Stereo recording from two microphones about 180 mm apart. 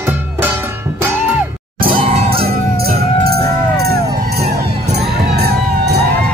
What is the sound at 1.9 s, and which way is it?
Music, 30° right (ahead or behind).